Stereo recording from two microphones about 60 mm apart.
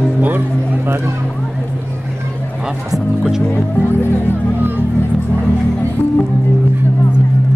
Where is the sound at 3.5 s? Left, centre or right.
Left.